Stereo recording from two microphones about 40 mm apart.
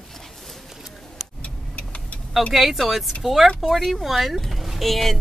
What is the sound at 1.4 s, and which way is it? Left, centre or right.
Vehicle, left.